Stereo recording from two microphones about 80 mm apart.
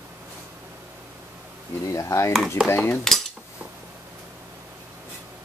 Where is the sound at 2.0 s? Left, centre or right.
Left.